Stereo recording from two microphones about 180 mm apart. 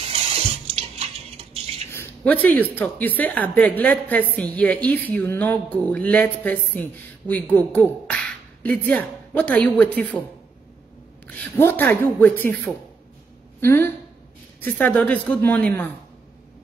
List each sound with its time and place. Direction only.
0.0 s water: 35° right (ahead or behind)
1.9 s a woman's voice: 10° left (ahead or behind)
11.2 s a woman's voice: 10° left (ahead or behind)